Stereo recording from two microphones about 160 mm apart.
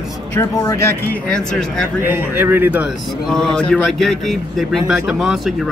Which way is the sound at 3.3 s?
5° left (ahead or behind).